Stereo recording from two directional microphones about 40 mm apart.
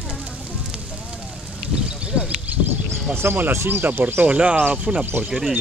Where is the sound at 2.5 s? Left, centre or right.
Right.